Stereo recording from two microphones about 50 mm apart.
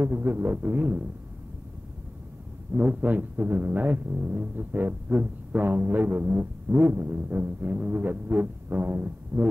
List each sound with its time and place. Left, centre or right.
0.0 s music: right
2.7 s music: right